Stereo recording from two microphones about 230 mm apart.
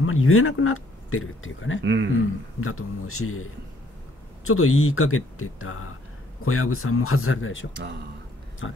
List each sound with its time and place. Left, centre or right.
0.0 s speech: left
1.8 s speech: right
2.6 s a man's voice: left
4.5 s a man's voice: left
7.7 s speech: right
8.6 s speech: left